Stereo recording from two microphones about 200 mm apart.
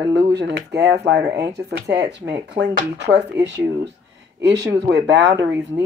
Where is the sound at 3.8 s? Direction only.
60° right (ahead or behind).